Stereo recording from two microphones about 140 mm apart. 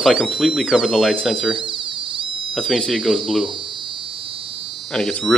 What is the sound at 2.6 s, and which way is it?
Speech, centre (ahead or behind).